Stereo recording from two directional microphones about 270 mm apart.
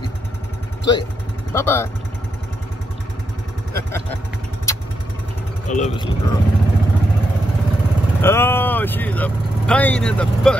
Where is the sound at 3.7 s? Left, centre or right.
Centre.